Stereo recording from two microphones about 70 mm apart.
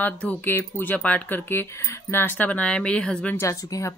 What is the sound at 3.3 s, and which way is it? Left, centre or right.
Speech, left.